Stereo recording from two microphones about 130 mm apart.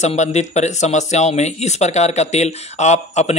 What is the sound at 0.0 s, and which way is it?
Speech, 60° left (ahead or behind).